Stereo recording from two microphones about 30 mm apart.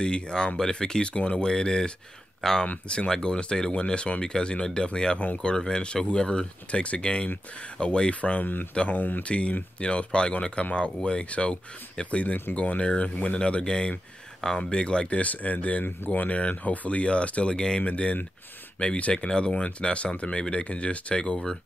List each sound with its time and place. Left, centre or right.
0.0 s speech: left
1.1 s speech: left
1.4 s speech: left
3.1 s speech: left
8.2 s speech: left
10.6 s speech: left
15.0 s speech: left
17.0 s speech: left
20.6 s speech: left
21.1 s speech: left